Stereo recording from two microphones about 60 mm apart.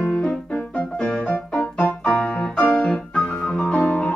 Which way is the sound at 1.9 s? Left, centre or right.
Left.